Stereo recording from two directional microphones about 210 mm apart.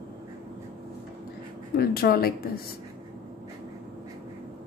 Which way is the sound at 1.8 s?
45° left (ahead or behind).